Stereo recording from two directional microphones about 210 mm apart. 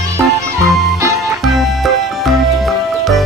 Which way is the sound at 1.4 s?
Centre (ahead or behind).